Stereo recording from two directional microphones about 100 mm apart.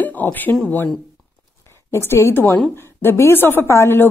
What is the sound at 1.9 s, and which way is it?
A woman's voice, 25° left (ahead or behind).